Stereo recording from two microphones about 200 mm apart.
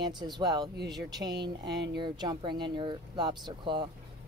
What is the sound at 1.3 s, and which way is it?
Speech, 55° right (ahead or behind).